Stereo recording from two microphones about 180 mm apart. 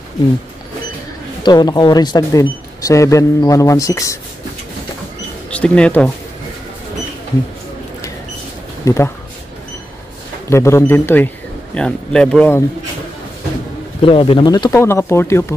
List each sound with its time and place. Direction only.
1.4 s speech: 25° left (ahead or behind)
5.5 s speech: 5° left (ahead or behind)
8.8 s speech: 15° left (ahead or behind)
10.5 s speech: 15° left (ahead or behind)
14.0 s speech: 30° left (ahead or behind)